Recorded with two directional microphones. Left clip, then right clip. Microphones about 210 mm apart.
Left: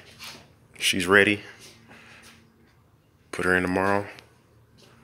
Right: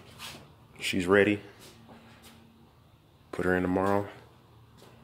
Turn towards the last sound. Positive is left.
turn(degrees=0)  # may be behind; listen again after turning